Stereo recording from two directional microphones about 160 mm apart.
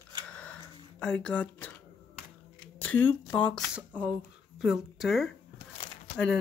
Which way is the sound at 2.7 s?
10° left (ahead or behind).